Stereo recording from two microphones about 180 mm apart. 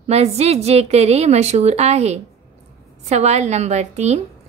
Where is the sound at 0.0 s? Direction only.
35° right (ahead or behind).